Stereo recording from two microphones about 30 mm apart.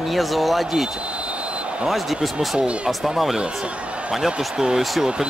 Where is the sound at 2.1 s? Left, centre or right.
Right.